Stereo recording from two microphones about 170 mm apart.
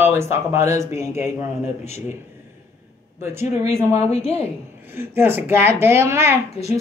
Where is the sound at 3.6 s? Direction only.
15° right (ahead or behind).